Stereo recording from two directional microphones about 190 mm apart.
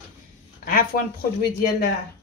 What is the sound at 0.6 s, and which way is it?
Speech, 50° left (ahead or behind).